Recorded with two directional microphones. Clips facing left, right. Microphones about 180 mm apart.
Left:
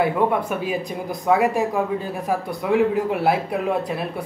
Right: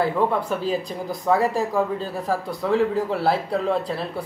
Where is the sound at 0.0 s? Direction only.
15° left (ahead or behind).